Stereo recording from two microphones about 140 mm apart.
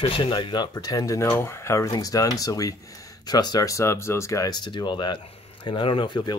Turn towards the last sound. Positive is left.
turn(degrees=35)  # may be behind; listen again after turning